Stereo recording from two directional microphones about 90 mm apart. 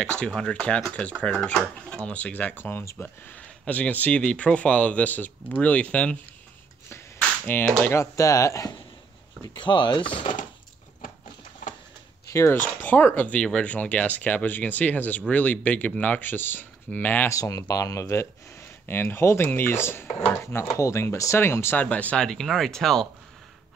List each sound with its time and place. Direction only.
0.0 s speech: 10° left (ahead or behind); by 3.1 s 30° left (ahead or behind)
3.3 s speech: 15° left (ahead or behind)
7.2 s a sound: 15° left (ahead or behind)
7.8 s speech: 30° left (ahead or behind)
9.5 s speech: 60° left (ahead or behind)
12.3 s speech: 30° left (ahead or behind)
17.3 s speech: 40° left (ahead or behind)
21.8 s speech: 15° left (ahead or behind)